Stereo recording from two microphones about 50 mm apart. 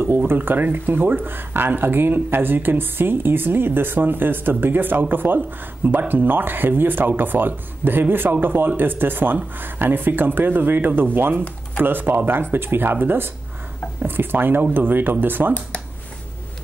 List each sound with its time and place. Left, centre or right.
0.3 s speech: right